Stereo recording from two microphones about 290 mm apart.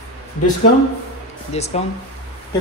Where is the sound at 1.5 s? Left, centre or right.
Left.